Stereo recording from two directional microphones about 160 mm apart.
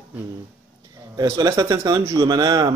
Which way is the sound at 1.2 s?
20° right (ahead or behind).